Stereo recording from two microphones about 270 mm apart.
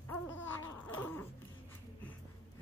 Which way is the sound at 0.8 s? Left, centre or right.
Centre.